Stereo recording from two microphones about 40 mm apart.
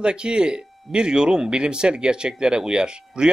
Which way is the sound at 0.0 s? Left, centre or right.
Right.